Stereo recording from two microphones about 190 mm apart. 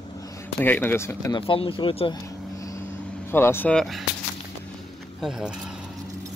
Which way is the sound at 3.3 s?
10° left (ahead or behind).